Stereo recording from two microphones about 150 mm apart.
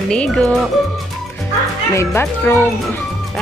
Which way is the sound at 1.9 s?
20° left (ahead or behind).